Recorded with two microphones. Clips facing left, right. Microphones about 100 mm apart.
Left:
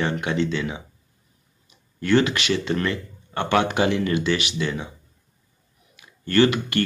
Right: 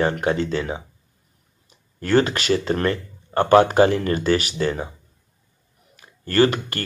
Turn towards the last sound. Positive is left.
turn(degrees=-40)  # may be behind; listen again after turning